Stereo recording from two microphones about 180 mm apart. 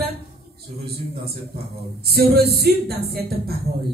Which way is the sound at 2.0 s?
60° right (ahead or behind).